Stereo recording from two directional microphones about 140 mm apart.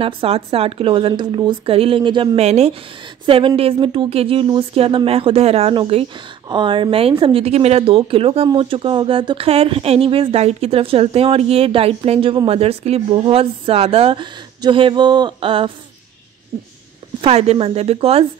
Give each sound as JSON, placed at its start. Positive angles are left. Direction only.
{"t": 0.0, "sound": "speech", "side_deg": -40}
{"t": 2.4, "sound": "a woman's voice", "side_deg": -50}
{"t": 3.3, "sound": "speech", "side_deg": -40}
{"t": 17.2, "sound": "a woman's voice", "side_deg": -50}